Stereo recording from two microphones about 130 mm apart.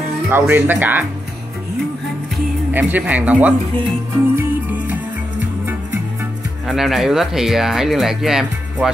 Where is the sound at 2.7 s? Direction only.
10° right (ahead or behind).